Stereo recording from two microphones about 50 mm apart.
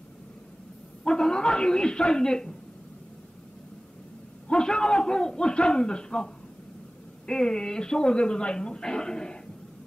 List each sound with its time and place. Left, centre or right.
1.0 s speech: centre
4.5 s speech: centre